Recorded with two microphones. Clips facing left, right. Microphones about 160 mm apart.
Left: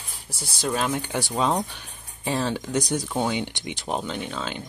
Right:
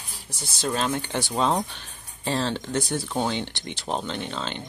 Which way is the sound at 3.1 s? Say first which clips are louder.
Even; 5° left (ahead or behind).